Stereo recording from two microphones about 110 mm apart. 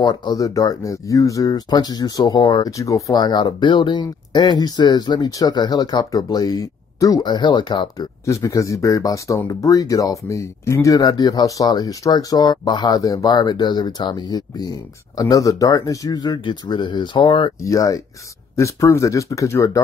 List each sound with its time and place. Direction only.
0.0 s speech: 40° left (ahead or behind)
2.7 s speech: 30° left (ahead or behind)
8.3 s speech: 30° left (ahead or behind); by 17.5 s 50° left (ahead or behind)
17.6 s speech: 30° left (ahead or behind)